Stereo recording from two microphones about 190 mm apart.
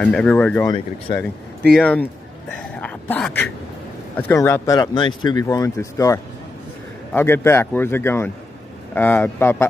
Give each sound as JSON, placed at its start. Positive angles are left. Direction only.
{"t": 0.0, "sound": "speech", "side_deg": 5}
{"t": 0.7, "sound": "speech", "side_deg": 25}
{"t": 1.7, "sound": "speech", "side_deg": 5}